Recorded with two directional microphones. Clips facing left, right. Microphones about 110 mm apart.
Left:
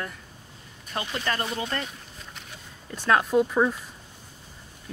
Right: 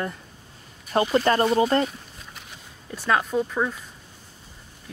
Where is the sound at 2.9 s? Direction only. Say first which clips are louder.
Left 2 dB; centre (ahead or behind).